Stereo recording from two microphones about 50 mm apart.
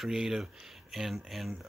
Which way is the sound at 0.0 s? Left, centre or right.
Centre.